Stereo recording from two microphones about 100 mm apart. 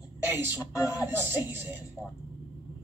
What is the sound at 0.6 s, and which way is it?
Speech, 35° left (ahead or behind).